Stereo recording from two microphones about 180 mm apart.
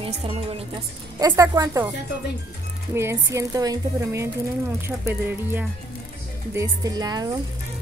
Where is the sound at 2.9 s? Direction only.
15° right (ahead or behind).